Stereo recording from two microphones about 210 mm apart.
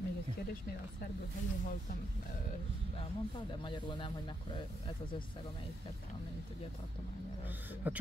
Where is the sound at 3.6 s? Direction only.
25° left (ahead or behind).